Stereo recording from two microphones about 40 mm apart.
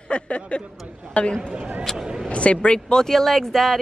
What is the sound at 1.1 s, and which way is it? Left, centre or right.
A child's voice, left.